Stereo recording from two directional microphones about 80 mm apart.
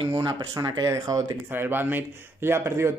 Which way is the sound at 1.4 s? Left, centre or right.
Right.